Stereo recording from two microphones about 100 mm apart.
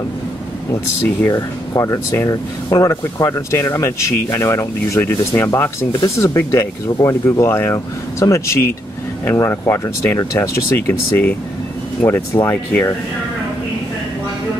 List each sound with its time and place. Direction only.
1.2 s speech: 35° left (ahead or behind)